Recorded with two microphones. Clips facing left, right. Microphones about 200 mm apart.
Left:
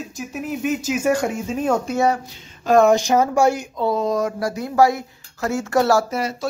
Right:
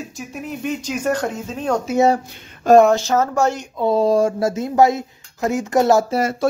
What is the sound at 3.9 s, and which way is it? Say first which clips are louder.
Speech: right 8 dB; 30° right (ahead or behind).